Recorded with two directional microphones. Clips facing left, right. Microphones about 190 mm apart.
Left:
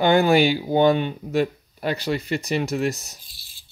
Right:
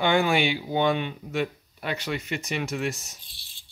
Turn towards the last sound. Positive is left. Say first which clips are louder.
# left 5 dB
turn(degrees=35)  # may be behind; listen again after turning